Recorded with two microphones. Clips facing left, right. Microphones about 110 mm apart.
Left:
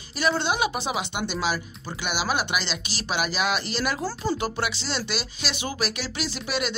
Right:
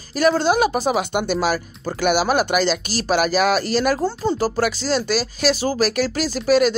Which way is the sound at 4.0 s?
30° right (ahead or behind).